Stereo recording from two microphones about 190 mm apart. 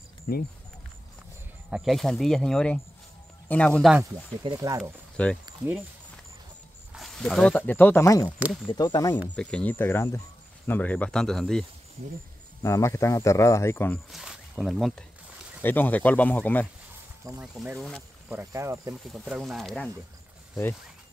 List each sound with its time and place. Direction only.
0.3 s speech: 55° left (ahead or behind)
1.7 s speech: centre (ahead or behind)
4.4 s speech: 20° right (ahead or behind)
5.1 s speech: 5° left (ahead or behind)
6.9 s speech: centre (ahead or behind); by 9.2 s 20° left (ahead or behind)
9.3 s speech: 5° left (ahead or behind)
12.6 s speech: 15° left (ahead or behind)
14.1 s speech: centre (ahead or behind)
17.4 s speech: 5° right (ahead or behind)